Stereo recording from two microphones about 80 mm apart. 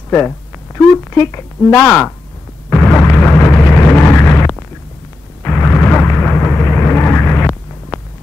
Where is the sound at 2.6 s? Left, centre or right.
Left.